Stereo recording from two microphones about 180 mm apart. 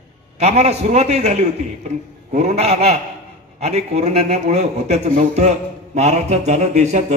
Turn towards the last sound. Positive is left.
turn(degrees=-40)  # may be behind; listen again after turning